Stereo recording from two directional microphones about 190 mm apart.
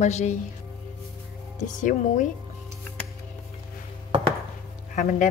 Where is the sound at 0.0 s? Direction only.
35° left (ahead or behind).